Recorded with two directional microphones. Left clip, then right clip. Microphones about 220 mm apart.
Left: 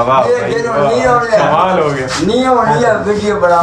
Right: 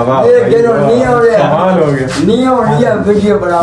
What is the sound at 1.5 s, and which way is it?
Speech, 40° left (ahead or behind).